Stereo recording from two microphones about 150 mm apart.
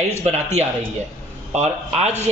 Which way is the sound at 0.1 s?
50° right (ahead or behind).